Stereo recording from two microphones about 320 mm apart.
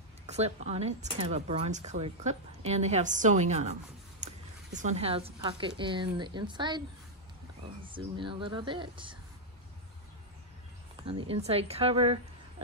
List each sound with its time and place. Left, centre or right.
0.3 s a woman's voice: centre
7.8 s speech: centre
11.1 s speech: centre